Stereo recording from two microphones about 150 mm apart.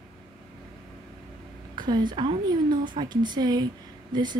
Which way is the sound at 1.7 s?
30° right (ahead or behind).